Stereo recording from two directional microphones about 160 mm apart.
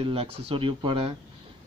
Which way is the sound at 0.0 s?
35° right (ahead or behind).